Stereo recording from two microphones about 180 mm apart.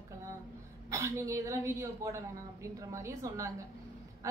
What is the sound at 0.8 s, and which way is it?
A woman's voice, 15° right (ahead or behind).